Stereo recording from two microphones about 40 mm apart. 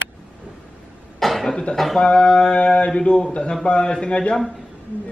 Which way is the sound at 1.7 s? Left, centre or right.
Centre.